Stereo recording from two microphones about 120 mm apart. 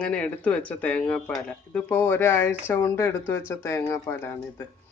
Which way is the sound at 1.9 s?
20° left (ahead or behind).